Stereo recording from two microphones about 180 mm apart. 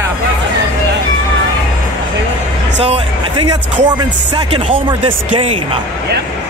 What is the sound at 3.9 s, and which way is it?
Speech, 25° right (ahead or behind).